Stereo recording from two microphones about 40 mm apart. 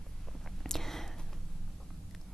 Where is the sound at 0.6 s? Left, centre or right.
Centre.